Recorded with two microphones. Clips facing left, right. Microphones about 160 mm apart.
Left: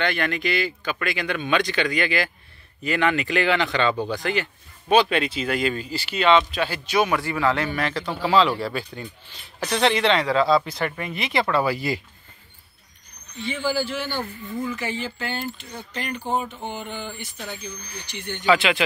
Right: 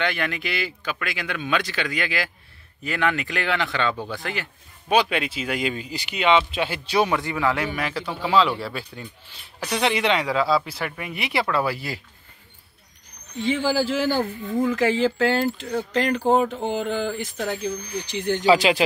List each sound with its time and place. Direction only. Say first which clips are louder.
0.0 s speech: left 2 dB; 5° right (ahead or behind); by 7.2 s 30° right (ahead or behind)
7.2 s speech: left 1 dB; 15° right (ahead or behind); by 12.0 s centre (ahead or behind)
13.4 s speech: right 3 dB; 90° right
18.4 s speech: right 2 dB; 35° right (ahead or behind)